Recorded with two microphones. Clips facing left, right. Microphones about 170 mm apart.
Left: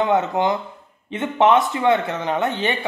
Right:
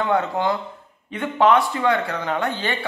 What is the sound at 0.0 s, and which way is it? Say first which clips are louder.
Speech: left 2 dB; 20° left (ahead or behind).